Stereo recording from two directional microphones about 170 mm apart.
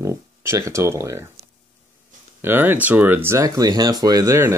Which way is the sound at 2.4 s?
10° right (ahead or behind).